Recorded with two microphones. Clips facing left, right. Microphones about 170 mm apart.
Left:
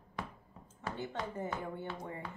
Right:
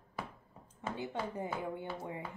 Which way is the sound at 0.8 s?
15° right (ahead or behind).